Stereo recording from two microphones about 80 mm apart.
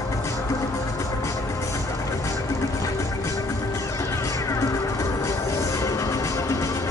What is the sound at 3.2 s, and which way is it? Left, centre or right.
Music, left.